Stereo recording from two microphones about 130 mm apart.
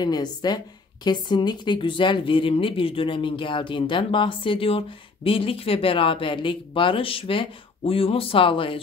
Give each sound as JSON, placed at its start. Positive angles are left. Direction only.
{"t": 0.0, "sound": "a woman's voice", "side_deg": 30}